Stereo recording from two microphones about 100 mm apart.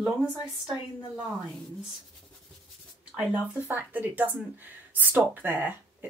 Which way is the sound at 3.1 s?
15° right (ahead or behind).